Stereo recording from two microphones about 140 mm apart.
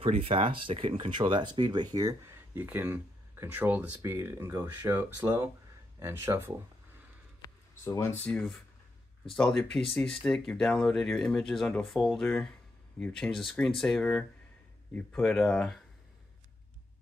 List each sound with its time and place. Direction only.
0.0 s speech: 40° right (ahead or behind); by 6.5 s 15° right (ahead or behind)
7.8 s speech: 20° left (ahead or behind); by 15.8 s 5° left (ahead or behind)